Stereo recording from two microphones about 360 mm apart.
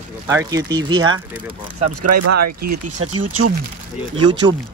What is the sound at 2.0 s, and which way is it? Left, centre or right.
Speech, right.